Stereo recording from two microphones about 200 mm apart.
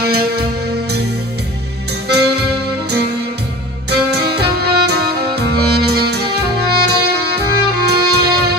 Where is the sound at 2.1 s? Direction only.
55° right (ahead or behind).